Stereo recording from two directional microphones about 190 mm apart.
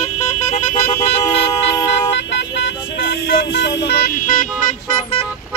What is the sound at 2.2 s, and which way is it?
Vehicle, 65° left (ahead or behind).